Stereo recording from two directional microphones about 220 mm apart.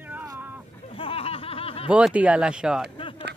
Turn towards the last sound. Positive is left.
turn(degrees=25)  # may be behind; listen again after turning